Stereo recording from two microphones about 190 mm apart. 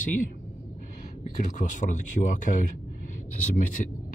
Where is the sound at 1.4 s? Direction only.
40° left (ahead or behind).